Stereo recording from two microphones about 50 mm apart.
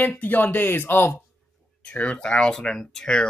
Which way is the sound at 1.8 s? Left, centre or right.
Left.